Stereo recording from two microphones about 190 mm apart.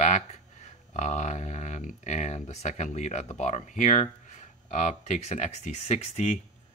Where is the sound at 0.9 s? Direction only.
40° left (ahead or behind).